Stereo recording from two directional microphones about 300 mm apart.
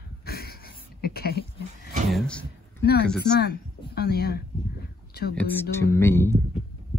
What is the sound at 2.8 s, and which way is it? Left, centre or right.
Speech, left.